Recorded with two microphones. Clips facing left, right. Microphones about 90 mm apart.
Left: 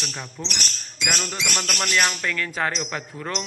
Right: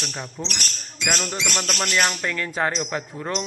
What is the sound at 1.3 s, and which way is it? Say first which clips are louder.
Music: right 1 dB; 25° right (ahead or behind).